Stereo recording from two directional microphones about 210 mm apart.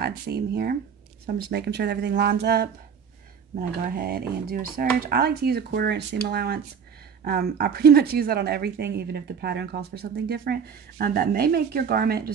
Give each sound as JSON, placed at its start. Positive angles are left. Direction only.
{"t": 0.0, "sound": "speech", "side_deg": -50}
{"t": 3.8, "sound": "speech", "side_deg": -45}